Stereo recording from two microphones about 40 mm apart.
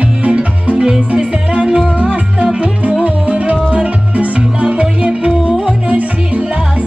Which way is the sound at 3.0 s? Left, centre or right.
Right.